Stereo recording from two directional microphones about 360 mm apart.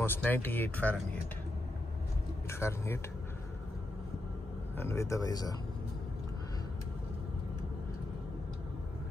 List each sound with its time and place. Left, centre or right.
0.0 s speech: centre
2.6 s speech: centre
4.7 s speech: centre